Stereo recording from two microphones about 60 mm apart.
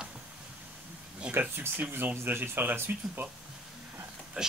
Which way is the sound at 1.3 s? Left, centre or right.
Right.